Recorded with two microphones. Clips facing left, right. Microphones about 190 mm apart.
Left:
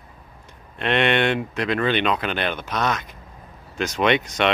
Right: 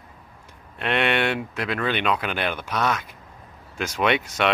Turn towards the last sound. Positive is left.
turn(degrees=-5)  # may be behind; listen again after turning